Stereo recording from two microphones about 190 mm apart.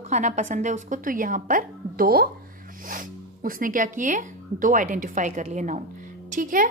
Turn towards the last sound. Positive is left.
turn(degrees=-45)  # may be behind; listen again after turning